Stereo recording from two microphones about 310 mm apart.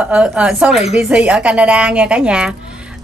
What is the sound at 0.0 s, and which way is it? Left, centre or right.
Speech, centre.